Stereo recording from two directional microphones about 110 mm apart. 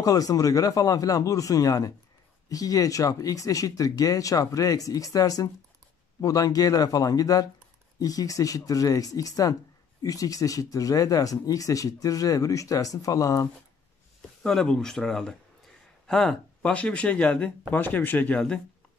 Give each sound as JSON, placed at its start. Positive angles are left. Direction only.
{"t": 0.0, "sound": "speech", "side_deg": 35}
{"t": 14.4, "sound": "speech", "side_deg": 5}